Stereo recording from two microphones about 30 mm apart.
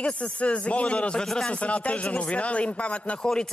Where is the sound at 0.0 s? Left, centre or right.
Left.